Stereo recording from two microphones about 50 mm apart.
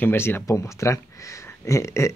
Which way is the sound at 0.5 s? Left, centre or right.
Left.